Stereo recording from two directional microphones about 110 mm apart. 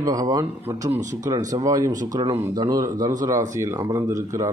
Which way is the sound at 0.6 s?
20° right (ahead or behind).